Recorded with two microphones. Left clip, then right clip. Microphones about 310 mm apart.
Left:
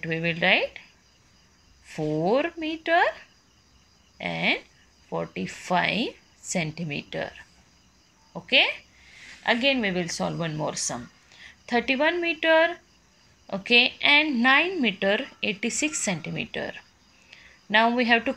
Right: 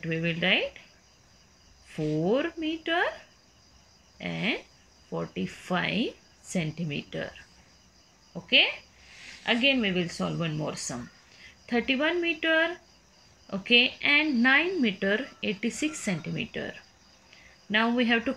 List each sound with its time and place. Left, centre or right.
0.0 s speech: centre
1.9 s a sound: centre
2.2 s speech: centre
4.2 s speech: centre
8.5 s a woman's voice: centre
17.3 s a sound: centre